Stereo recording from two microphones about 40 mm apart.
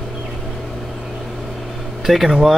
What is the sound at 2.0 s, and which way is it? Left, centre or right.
Speech, centre.